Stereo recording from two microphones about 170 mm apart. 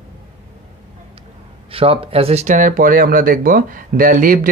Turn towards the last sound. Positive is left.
turn(degrees=-55)  # may be behind; listen again after turning